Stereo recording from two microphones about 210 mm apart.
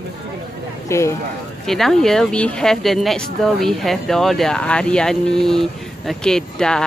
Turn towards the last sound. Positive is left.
turn(degrees=5)  # may be behind; listen again after turning